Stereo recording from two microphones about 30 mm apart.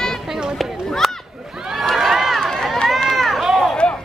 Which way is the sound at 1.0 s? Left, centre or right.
Centre.